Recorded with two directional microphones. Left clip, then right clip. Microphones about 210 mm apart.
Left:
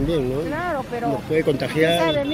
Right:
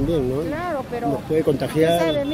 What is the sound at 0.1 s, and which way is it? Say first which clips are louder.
Speech: even; 20° right (ahead or behind).